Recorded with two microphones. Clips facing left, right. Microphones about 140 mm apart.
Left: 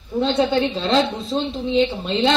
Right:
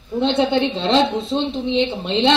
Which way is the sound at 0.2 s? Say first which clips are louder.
Right 1 dB; 25° right (ahead or behind).